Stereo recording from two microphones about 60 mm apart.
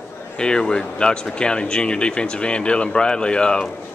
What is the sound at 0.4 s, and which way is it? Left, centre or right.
Speech, centre.